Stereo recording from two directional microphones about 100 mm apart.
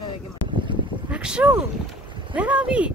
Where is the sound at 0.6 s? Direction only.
55° right (ahead or behind).